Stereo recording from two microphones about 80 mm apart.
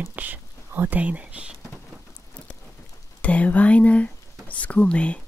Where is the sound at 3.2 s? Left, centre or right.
Centre.